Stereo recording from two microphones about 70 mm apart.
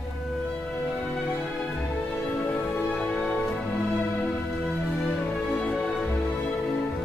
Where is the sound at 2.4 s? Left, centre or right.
Left.